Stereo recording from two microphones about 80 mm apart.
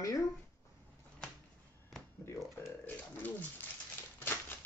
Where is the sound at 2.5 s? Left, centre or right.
Left.